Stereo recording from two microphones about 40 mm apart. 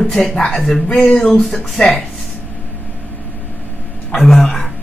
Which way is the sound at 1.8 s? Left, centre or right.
Left.